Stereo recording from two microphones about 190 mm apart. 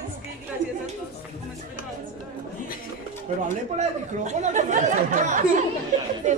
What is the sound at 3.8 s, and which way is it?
Speech, 40° right (ahead or behind).